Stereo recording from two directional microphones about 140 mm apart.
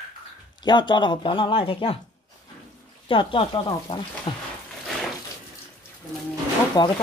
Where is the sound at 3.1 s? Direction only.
40° left (ahead or behind).